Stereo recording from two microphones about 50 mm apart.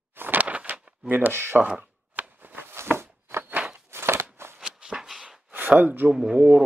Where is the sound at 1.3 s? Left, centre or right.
Right.